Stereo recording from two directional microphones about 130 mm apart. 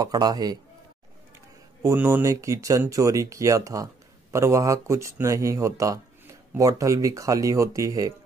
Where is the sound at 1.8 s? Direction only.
25° right (ahead or behind).